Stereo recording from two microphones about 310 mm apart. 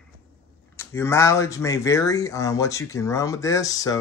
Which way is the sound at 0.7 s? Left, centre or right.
Centre.